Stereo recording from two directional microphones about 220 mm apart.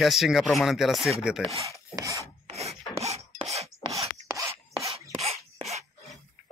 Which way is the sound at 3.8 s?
15° right (ahead or behind).